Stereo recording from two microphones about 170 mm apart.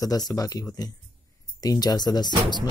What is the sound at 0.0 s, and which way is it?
Speech, 20° left (ahead or behind).